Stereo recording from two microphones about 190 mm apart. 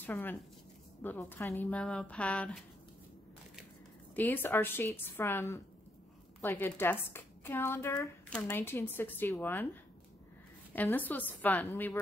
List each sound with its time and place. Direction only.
0.0 s a woman's voice: 10° left (ahead or behind)
4.1 s a woman's voice: 10° left (ahead or behind)
10.7 s a woman's voice: 10° left (ahead or behind)